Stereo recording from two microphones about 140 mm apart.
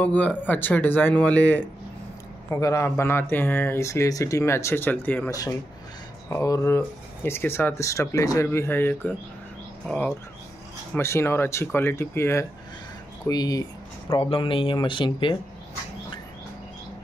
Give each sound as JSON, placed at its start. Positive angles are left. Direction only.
{"t": 0.0, "sound": "speech", "side_deg": 10}
{"t": 2.5, "sound": "speech", "side_deg": 20}
{"t": 11.0, "sound": "speech", "side_deg": 20}
{"t": 14.0, "sound": "speech", "side_deg": 40}